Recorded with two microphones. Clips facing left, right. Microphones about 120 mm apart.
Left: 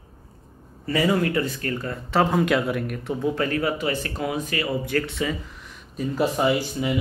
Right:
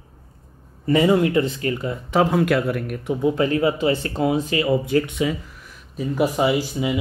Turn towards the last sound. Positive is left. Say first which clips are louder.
# right 2 dB
turn(degrees=-15)  # may be behind; listen again after turning